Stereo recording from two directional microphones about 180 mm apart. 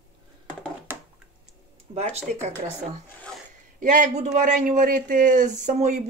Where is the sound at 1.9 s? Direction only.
30° right (ahead or behind).